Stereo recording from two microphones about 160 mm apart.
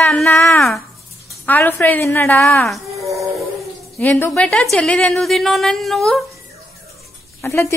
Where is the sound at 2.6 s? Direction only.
Centre (ahead or behind).